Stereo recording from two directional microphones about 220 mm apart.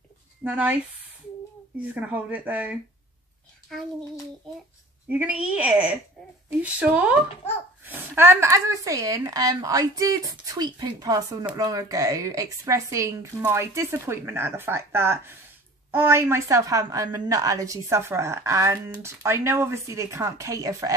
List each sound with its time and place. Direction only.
0.4 s speech: 10° right (ahead or behind)
1.8 s speech: 5° right (ahead or behind)
5.2 s speech: 5° right (ahead or behind)